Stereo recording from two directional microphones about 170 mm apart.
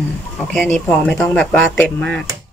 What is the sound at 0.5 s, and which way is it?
Speech, 5° left (ahead or behind).